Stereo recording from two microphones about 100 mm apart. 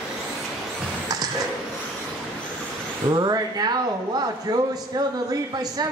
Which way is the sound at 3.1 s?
45° right (ahead or behind).